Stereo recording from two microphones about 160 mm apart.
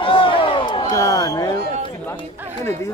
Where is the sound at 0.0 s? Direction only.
35° left (ahead or behind).